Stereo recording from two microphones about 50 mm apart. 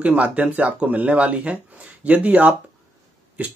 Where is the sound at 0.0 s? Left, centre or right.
Right.